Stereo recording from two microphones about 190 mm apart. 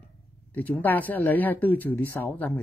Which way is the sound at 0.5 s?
10° left (ahead or behind).